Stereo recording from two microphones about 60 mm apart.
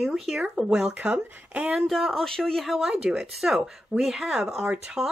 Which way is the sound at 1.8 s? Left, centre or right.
Centre.